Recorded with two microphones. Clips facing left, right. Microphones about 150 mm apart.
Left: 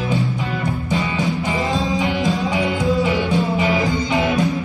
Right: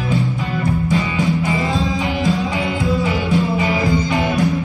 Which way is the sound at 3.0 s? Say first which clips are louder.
Right 1 dB; 20° left (ahead or behind).